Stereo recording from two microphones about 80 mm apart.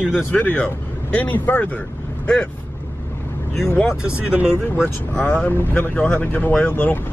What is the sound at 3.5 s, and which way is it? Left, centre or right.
Speech, centre.